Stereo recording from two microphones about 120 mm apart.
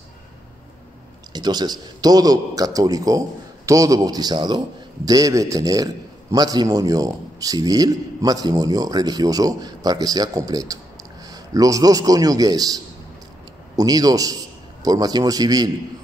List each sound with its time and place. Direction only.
1.3 s a man's voice: 35° right (ahead or behind)